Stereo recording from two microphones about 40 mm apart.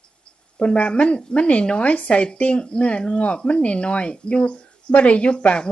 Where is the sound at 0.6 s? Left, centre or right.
Left.